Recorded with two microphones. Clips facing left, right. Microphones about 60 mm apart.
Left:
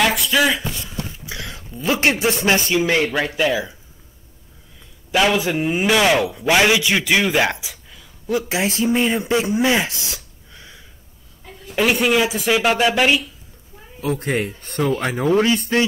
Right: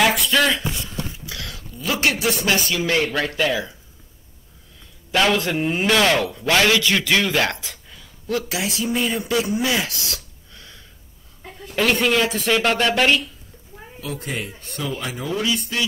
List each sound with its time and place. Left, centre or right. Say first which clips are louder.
0.0 s a sound: left 1 dB; centre
1.2 s speech: left 2 dB; left
5.1 s a man's voice: left 1 dB; centre
8.5 s a man's voice: left 5 dB; left; by 13.3 s centre
14.0 s a man's voice: left 7 dB; left